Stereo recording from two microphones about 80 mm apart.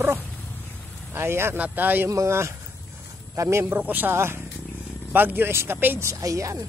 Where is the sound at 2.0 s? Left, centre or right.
Right.